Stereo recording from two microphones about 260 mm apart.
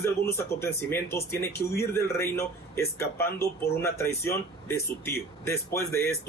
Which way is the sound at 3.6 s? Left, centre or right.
Left.